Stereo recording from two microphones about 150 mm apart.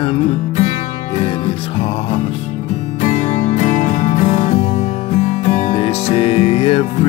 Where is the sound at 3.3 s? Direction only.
50° left (ahead or behind).